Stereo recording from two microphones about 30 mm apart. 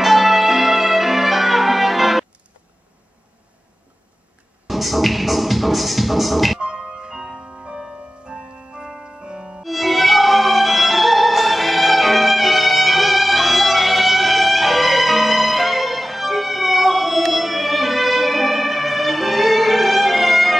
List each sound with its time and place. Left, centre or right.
0.0 s music: centre
4.6 s music: centre
6.6 s music: right
9.6 s music: centre